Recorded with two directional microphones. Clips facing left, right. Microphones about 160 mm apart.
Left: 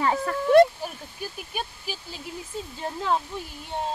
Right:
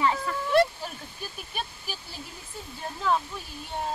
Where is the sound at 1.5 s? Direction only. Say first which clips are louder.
Left 1 dB; 15° left (ahead or behind).